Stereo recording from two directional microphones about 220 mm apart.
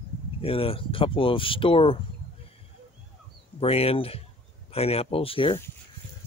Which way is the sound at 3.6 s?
25° left (ahead or behind).